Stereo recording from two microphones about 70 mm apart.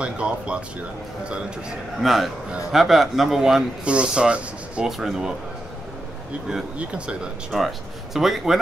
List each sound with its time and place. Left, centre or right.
0.0 s speech: centre
2.0 s a man's voice: centre
4.8 s a man's voice: centre
7.5 s a man's voice: centre